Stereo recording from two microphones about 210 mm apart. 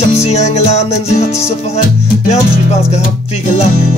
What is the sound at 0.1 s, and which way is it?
Music, 30° left (ahead or behind).